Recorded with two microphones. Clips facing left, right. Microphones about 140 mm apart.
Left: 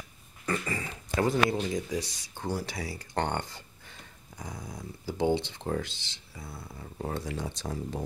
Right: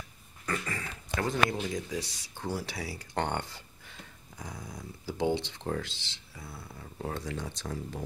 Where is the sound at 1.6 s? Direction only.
5° right (ahead or behind).